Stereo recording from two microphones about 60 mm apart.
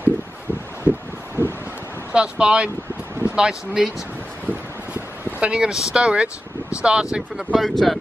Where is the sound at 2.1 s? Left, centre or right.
Centre.